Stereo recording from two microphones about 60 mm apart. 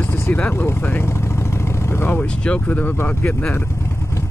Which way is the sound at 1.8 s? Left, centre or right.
Left.